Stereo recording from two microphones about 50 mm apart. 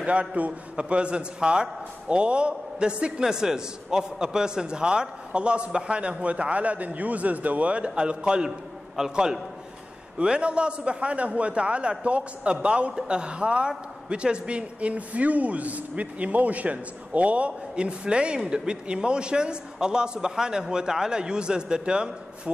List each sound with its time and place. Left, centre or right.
0.0 s a man's voice: right